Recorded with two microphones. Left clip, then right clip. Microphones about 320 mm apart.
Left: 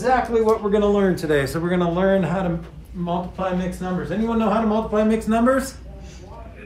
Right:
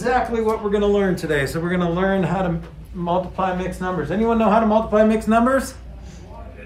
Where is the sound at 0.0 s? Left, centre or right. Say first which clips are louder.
Left 1 dB; centre.